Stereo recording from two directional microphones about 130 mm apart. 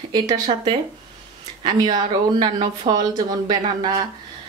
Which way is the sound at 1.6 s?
35° right (ahead or behind).